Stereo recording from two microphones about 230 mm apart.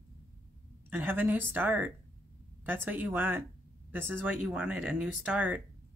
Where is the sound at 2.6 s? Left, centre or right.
Centre.